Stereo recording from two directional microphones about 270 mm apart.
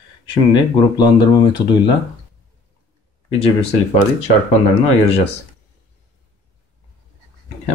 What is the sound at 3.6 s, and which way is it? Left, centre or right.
Speech, left.